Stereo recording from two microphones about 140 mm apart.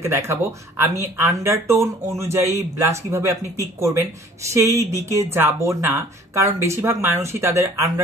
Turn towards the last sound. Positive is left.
turn(degrees=-20)  # may be behind; listen again after turning